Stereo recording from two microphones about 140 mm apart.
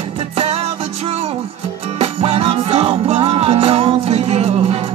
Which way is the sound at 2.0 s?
45° right (ahead or behind).